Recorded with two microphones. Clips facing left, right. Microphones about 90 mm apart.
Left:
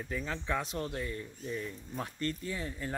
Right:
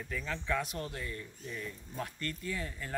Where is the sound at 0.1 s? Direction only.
25° left (ahead or behind).